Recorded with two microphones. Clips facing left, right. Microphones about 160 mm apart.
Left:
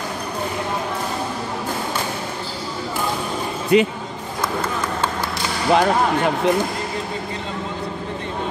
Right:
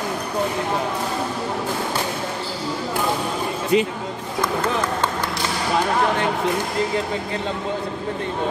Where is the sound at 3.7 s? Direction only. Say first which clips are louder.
Left 3 dB; 65° left (ahead or behind).